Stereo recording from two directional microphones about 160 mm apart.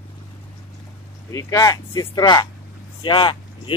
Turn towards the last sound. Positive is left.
turn(degrees=30)  # may be behind; listen again after turning